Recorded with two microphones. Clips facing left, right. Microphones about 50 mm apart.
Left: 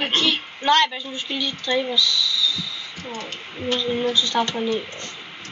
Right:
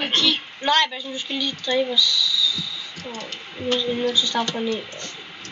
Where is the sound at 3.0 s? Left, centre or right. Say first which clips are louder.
Left 2 dB; left.